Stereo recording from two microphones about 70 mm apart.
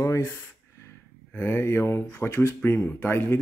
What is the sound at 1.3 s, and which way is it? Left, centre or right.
Speech, left.